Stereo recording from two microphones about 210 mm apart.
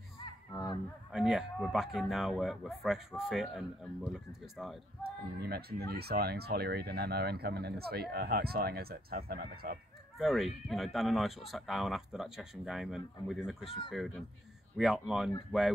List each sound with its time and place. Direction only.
1.1 s speech: centre (ahead or behind)
5.4 s speech: 50° right (ahead or behind)
10.1 s speech: centre (ahead or behind)